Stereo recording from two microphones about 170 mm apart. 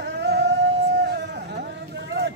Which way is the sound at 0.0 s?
90° right.